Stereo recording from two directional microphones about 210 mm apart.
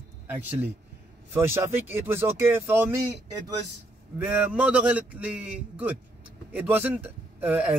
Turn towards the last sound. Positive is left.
turn(degrees=-10)  # may be behind; listen again after turning